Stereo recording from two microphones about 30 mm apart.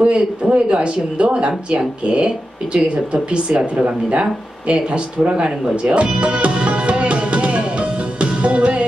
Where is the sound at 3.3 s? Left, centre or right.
Right.